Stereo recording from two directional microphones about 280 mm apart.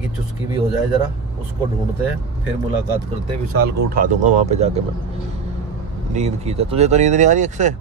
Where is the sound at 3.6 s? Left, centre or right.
Right.